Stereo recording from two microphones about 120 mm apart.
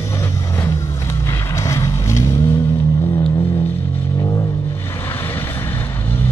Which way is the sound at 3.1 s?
40° left (ahead or behind).